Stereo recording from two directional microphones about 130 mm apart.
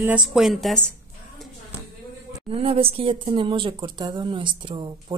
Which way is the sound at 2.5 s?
50° right (ahead or behind).